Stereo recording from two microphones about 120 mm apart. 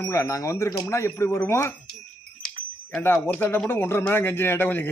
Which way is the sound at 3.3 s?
15° left (ahead or behind).